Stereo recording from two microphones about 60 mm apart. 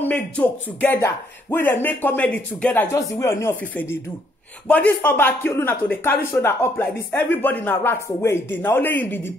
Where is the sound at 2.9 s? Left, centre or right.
Left.